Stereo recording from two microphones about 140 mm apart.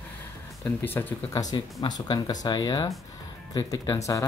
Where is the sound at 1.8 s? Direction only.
30° left (ahead or behind).